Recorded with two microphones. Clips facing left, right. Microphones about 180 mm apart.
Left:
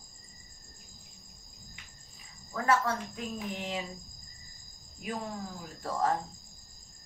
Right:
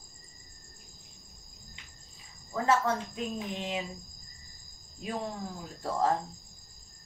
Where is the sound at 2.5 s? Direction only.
25° right (ahead or behind).